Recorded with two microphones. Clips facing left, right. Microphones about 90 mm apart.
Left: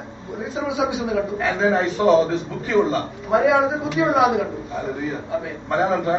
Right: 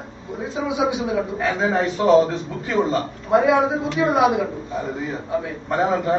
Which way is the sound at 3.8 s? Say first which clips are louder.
Even; centre (ahead or behind).